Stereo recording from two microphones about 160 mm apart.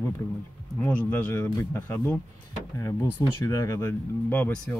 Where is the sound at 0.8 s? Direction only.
10° left (ahead or behind).